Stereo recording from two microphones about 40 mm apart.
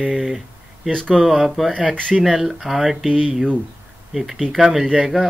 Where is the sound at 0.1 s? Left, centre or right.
Centre.